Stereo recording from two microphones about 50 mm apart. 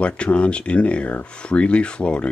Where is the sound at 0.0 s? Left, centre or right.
Left.